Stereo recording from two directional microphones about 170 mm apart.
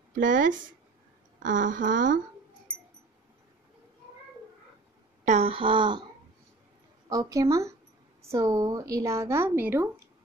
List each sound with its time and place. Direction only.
0.1 s speech: 50° right (ahead or behind)
5.2 s speech: 40° right (ahead or behind)
7.1 s a woman's voice: 20° right (ahead or behind)